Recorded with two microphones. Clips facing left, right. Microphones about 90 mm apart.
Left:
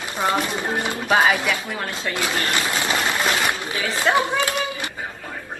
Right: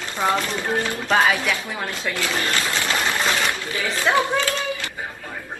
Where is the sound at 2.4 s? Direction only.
15° left (ahead or behind).